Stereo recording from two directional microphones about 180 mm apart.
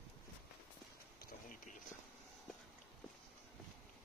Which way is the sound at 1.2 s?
50° left (ahead or behind).